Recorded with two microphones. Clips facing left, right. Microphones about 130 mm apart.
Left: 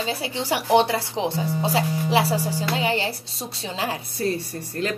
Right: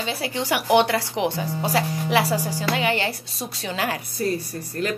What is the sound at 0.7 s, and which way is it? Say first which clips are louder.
Speech: even; 70° right (ahead or behind).